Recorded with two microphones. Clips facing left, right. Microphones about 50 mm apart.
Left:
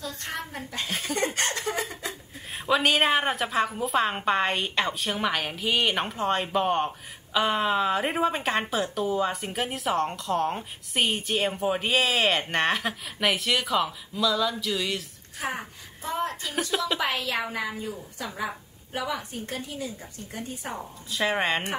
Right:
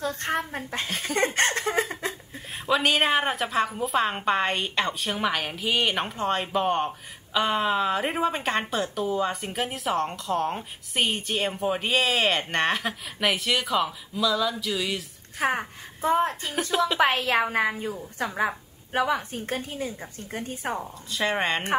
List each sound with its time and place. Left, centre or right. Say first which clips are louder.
0.0 s a woman's voice: right 7 dB; right
0.8 s a woman's voice: even; centre
1.1 s chuckle: right 5 dB; right
2.5 s a woman's voice: even; centre
15.5 s a woman's voice: right 5 dB; right
21.1 s a woman's voice: even; centre